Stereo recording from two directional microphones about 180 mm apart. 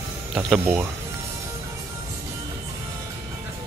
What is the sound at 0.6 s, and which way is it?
Speech, 10° right (ahead or behind).